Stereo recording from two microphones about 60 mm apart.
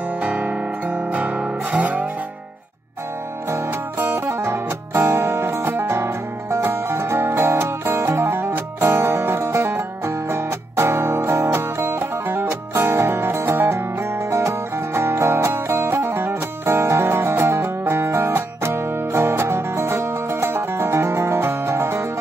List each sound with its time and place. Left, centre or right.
0.2 s guitar: right
3.4 s music: right